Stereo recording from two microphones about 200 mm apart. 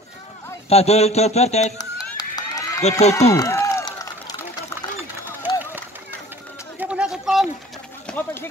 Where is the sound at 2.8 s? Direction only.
35° left (ahead or behind).